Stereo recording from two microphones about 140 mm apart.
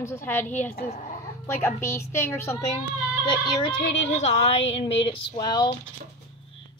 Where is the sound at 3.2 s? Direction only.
35° left (ahead or behind).